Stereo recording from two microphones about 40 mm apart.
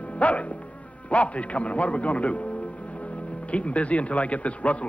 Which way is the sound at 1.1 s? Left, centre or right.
Left.